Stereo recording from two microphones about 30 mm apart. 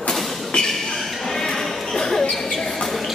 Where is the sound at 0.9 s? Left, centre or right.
Centre.